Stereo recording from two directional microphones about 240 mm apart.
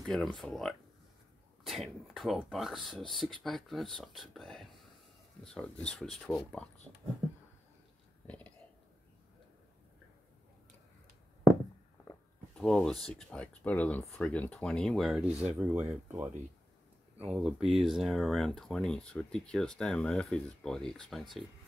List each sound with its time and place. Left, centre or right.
0.0 s speech: centre
8.3 s whispering: centre
12.0 s a sound: centre
12.6 s speech: centre
17.3 s speech: centre